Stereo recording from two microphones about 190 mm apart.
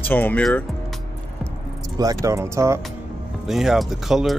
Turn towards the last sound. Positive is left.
turn(degrees=0)  # may be behind; listen again after turning